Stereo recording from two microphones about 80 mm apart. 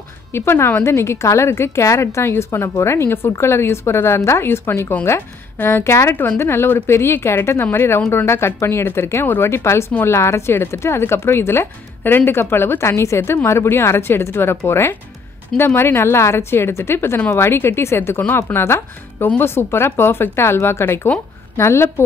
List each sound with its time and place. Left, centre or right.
0.3 s a woman's voice: left